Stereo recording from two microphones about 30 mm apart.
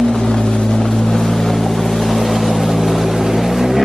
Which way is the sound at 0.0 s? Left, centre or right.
Left.